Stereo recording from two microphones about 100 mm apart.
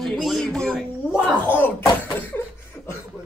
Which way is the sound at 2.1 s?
20° left (ahead or behind).